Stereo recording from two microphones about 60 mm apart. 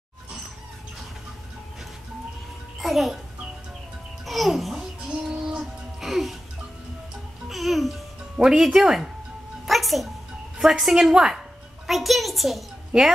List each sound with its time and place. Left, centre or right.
2.8 s a child's voice: centre
4.3 s babbling: centre
5.3 s music: centre
5.9 s music: centre
7.4 s music: centre
8.4 s a woman's voice: centre
9.7 s music: centre
10.6 s a woman's voice: centre